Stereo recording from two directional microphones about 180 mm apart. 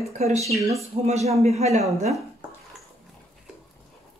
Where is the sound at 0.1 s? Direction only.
40° right (ahead or behind).